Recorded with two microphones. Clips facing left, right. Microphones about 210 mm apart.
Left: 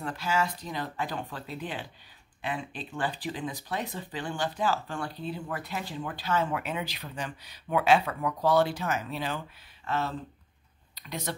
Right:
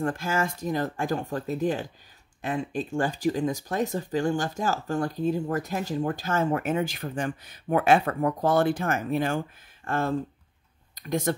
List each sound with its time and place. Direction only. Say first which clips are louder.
0.0 s speech: right 3 dB; 50° right (ahead or behind)